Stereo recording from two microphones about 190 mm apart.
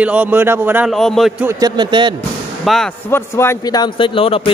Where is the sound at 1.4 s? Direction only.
15° right (ahead or behind).